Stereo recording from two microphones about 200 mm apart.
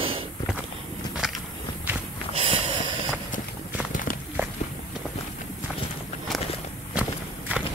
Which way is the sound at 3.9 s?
40° left (ahead or behind).